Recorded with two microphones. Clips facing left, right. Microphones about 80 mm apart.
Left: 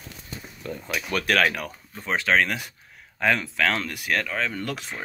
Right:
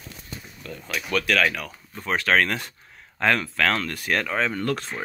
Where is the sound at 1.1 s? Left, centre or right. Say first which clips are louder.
Even; left.